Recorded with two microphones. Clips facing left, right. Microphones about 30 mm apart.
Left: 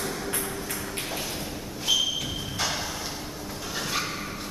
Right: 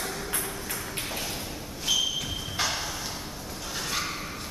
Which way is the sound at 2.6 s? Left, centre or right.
Centre.